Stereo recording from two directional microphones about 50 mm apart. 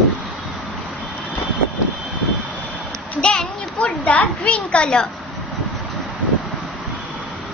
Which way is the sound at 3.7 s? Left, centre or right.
Left.